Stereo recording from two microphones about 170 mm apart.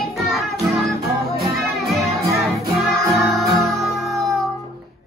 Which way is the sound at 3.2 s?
Centre (ahead or behind).